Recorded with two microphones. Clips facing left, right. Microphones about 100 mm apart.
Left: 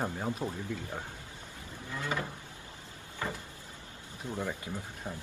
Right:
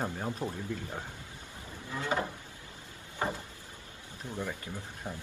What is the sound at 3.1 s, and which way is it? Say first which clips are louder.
Cupboard open or close: right 4 dB; 20° right (ahead or behind).